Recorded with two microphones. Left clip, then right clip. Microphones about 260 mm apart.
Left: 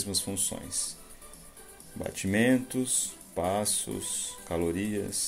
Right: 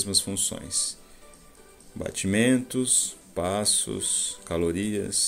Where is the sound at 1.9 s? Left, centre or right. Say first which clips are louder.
Right 3 dB; centre.